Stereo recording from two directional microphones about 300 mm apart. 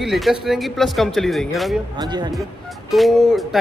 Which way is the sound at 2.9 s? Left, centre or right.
Centre.